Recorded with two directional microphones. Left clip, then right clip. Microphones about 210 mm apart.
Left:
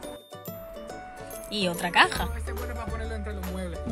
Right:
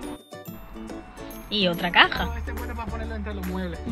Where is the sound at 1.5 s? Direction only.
10° left (ahead or behind).